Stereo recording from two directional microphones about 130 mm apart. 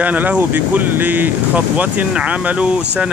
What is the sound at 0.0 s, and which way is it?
Speech, 10° right (ahead or behind).